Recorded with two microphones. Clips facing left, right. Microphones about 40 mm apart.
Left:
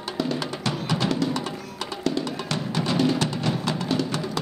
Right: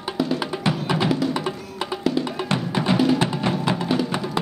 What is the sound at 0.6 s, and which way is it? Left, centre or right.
Music, centre.